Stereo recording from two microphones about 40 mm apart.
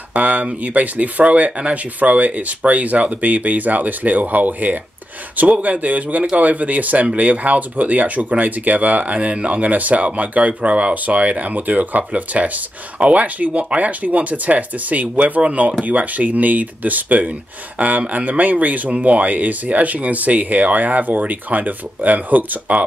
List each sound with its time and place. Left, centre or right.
0.1 s speech: right
12.0 s speech: right
13.7 s speech: right